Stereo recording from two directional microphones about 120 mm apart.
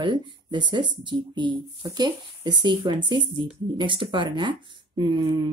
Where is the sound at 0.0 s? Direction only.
40° right (ahead or behind).